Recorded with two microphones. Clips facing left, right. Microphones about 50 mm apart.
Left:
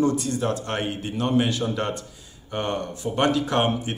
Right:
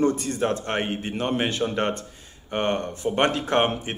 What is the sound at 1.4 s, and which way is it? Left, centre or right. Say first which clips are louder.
Speech: even; right.